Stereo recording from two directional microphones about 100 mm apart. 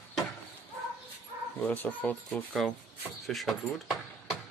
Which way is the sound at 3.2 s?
Centre (ahead or behind).